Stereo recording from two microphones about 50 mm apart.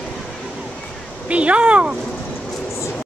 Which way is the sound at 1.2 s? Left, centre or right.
Right.